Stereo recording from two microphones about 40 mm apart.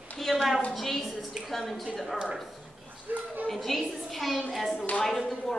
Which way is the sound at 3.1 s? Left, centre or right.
Right.